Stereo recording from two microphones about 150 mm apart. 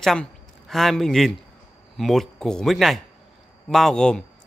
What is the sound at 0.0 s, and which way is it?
A man's voice, 5° left (ahead or behind).